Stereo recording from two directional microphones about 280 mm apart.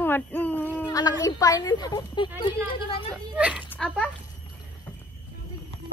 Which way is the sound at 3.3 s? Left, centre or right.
Centre.